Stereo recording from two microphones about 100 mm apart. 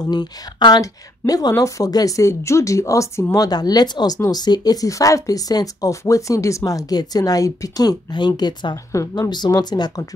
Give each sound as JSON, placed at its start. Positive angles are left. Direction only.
{"t": 0.0, "sound": "speech", "side_deg": 45}
{"t": 3.4, "sound": "speech", "side_deg": 40}